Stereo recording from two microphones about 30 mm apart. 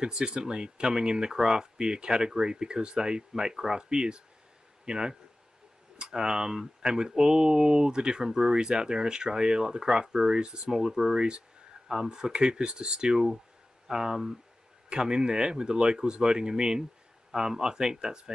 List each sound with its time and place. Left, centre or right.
0.0 s speech: right
14.9 s speech: right